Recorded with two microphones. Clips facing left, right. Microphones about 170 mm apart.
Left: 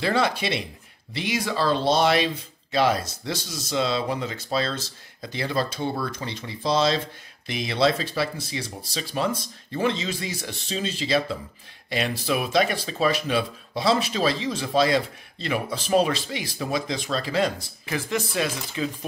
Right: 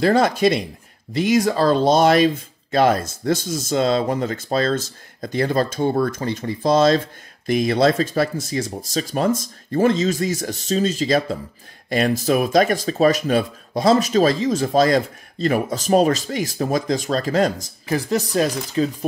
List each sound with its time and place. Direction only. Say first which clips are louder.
0.0 s speech: right 8 dB; 45° right (ahead or behind)